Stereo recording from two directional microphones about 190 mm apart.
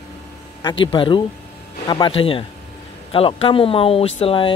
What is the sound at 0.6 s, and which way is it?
Speech, 25° left (ahead or behind).